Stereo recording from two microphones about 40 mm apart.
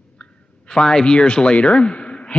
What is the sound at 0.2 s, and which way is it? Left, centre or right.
Speech, centre.